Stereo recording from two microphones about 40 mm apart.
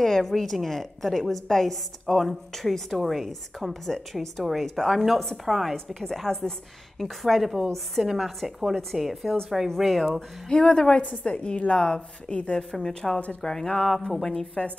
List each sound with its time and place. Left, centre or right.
0.0 s a woman's voice: centre
10.5 s a woman's voice: left
11.0 s a woman's voice: left
12.5 s a woman's voice: centre